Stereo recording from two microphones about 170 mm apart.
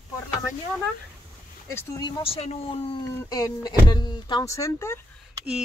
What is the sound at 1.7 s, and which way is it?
Speech, 20° left (ahead or behind).